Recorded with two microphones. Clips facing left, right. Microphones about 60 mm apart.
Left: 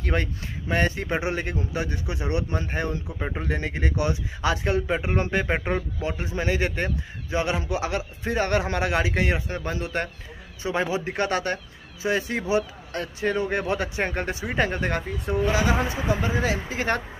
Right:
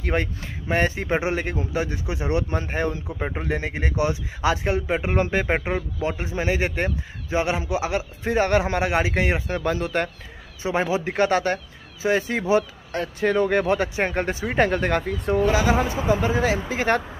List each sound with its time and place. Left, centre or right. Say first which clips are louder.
0.0 s a man's voice: right 2 dB; right
9.7 s speech: right 5 dB; right
10.6 s a man's voice: right 3 dB; right
13.2 s speech: right 5 dB; right
13.7 s speech: right 4 dB; right
14.7 s speech: right 5 dB; right
15.8 s speech: right 4 dB; right